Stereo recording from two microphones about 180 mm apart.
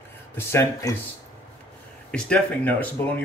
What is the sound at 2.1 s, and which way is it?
Speech, 5° left (ahead or behind).